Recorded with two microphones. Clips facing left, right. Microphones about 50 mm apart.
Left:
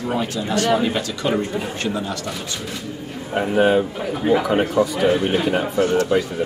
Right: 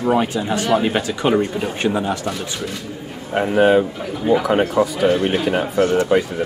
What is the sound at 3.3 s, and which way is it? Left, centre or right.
A man's voice, centre.